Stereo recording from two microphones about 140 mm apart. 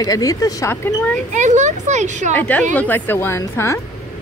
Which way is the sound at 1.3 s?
60° right (ahead or behind).